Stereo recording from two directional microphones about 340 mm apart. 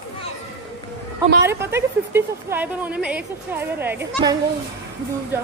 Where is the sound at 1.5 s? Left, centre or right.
Centre.